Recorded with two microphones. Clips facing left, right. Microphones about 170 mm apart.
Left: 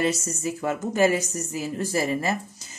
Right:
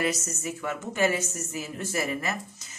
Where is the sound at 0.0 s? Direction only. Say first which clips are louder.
Left 4 dB; 30° left (ahead or behind).